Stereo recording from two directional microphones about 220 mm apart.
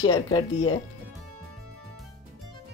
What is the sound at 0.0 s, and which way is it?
Speech, 20° left (ahead or behind).